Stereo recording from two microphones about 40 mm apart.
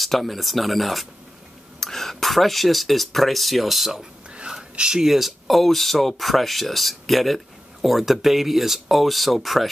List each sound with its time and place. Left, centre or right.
0.0 s speech: centre
4.3 s a sound: right
4.7 s speech: right
5.0 s speech: centre